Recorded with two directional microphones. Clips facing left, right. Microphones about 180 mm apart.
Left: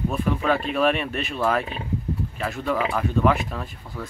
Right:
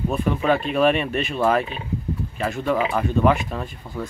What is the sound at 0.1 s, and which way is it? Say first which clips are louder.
Speech: right 4 dB; centre (ahead or behind).